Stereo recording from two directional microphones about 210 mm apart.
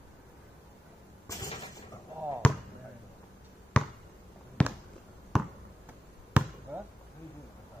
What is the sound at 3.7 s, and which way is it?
Basketball bounce, 5° left (ahead or behind).